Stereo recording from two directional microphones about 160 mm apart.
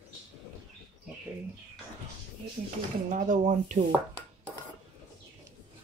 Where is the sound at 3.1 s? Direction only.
55° right (ahead or behind).